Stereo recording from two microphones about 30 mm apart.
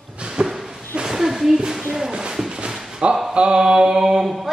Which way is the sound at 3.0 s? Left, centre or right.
Right.